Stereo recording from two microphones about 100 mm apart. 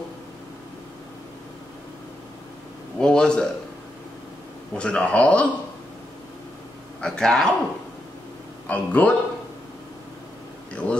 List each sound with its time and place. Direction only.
3.0 s speech: 5° left (ahead or behind)
4.7 s speech: 10° left (ahead or behind)
7.0 s speech: 5° left (ahead or behind)
8.6 s speech: 15° left (ahead or behind)
10.7 s a sound: 10° left (ahead or behind)